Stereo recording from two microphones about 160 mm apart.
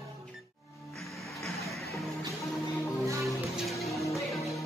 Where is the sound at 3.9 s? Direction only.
20° left (ahead or behind).